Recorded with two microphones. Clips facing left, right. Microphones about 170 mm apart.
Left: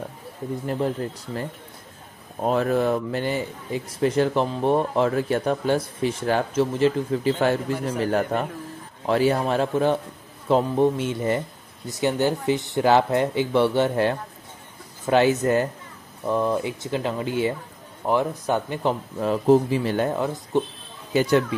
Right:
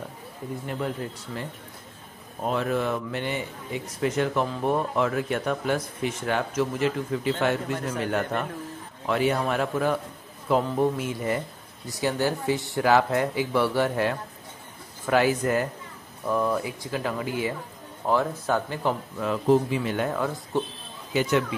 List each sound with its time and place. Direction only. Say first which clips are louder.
0.7 s speech: left 5 dB; 35° left (ahead or behind)
2.4 s speech: left 5 dB; 40° left (ahead or behind); by 18.9 s 20° left (ahead or behind)
19.1 s speech: left 4 dB; 35° left (ahead or behind)
21.1 s speech: left 4 dB; 35° left (ahead or behind)